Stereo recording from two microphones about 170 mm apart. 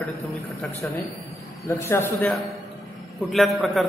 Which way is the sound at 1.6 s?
15° left (ahead or behind).